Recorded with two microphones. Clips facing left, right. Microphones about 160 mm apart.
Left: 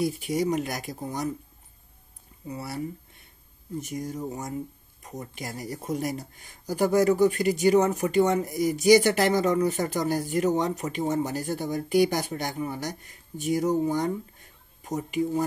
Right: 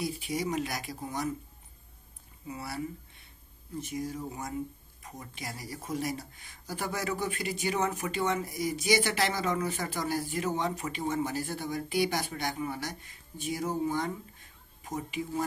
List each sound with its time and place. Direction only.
0.0 s speech: 50° left (ahead or behind)
2.4 s speech: 40° left (ahead or behind)